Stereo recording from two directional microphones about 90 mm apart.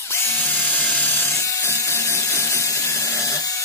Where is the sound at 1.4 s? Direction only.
35° left (ahead or behind).